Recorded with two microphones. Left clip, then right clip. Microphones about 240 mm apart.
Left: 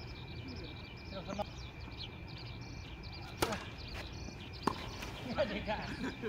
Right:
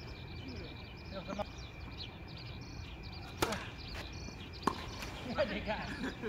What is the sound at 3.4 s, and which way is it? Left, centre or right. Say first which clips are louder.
Chop: right 1 dB; centre.